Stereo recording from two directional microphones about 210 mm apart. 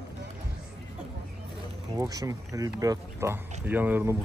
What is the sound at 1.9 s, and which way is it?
Speech, 15° right (ahead or behind).